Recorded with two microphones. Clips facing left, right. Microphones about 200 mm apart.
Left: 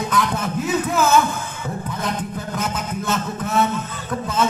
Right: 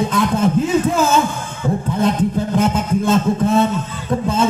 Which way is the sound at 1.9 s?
30° right (ahead or behind).